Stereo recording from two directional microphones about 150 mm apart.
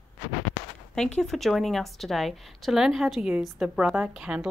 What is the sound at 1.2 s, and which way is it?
A woman's voice, centre (ahead or behind).